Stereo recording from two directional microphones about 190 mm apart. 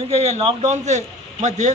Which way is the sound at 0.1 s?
35° right (ahead or behind).